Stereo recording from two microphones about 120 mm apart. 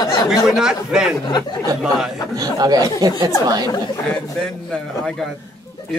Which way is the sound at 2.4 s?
30° right (ahead or behind).